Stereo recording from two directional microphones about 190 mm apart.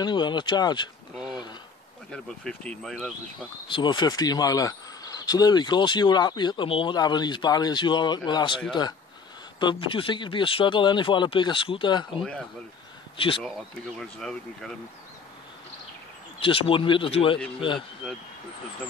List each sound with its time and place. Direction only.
0.0 s speech: 25° left (ahead or behind)
1.1 s a sound: 5° right (ahead or behind)
2.0 s speech: 5° left (ahead or behind)
3.6 s speech: 25° left (ahead or behind)
12.2 s speech: 5° left (ahead or behind)
13.9 s speech: 5° left (ahead or behind)
16.3 s speech: 30° left (ahead or behind)